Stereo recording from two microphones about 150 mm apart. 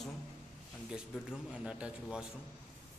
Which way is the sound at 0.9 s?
5° right (ahead or behind).